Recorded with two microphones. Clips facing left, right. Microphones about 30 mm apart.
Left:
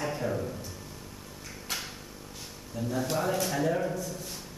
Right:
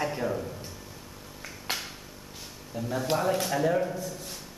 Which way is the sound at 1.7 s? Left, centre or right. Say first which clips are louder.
Right 3 dB; right.